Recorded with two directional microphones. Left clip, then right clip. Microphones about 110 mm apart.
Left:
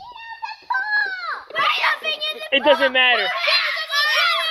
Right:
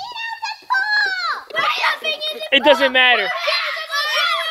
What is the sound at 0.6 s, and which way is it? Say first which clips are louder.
Chicken: right 3 dB; 5° right (ahead or behind).